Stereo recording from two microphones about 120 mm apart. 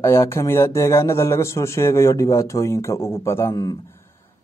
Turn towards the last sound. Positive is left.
turn(degrees=20)  # may be behind; listen again after turning